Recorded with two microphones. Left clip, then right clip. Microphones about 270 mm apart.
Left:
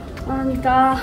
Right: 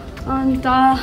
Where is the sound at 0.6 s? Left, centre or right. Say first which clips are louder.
Right 1 dB; centre.